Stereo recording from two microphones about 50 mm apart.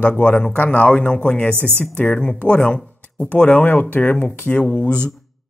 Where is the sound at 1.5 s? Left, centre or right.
Right.